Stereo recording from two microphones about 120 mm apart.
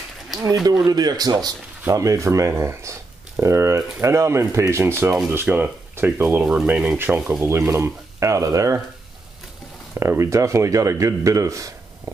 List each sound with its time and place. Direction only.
0.8 s speech: 35° right (ahead or behind)
9.9 s speech: 25° right (ahead or behind)